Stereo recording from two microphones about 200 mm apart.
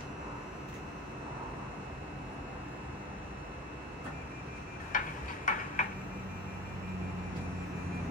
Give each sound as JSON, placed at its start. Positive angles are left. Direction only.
{"t": 4.9, "sound": "tick-tock", "side_deg": 40}